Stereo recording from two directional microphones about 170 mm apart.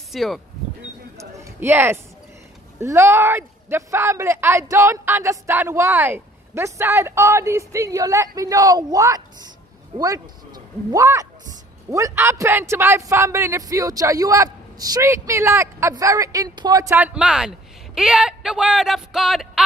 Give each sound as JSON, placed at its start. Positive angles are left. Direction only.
{"t": 0.1, "sound": "speech", "side_deg": 0}
{"t": 1.1, "sound": "a sound", "side_deg": -15}
{"t": 2.8, "sound": "speech", "side_deg": -15}